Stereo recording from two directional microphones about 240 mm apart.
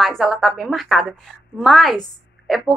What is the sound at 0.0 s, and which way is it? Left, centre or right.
A woman's voice, centre.